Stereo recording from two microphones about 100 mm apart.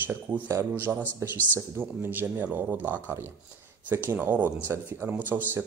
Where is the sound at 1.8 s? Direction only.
20° right (ahead or behind).